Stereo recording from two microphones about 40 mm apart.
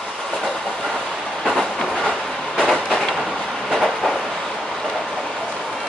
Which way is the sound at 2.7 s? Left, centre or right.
Centre.